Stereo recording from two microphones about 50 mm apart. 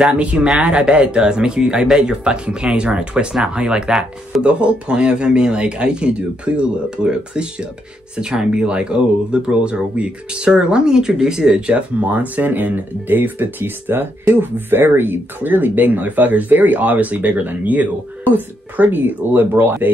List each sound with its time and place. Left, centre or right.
0.0 s speech: right
12.1 s speech: right